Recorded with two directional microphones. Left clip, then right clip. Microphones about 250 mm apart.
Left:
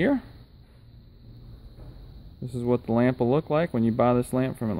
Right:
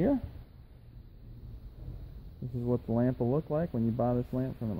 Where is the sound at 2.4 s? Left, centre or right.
Left.